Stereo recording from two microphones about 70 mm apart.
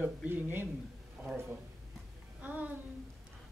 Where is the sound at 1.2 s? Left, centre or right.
Centre.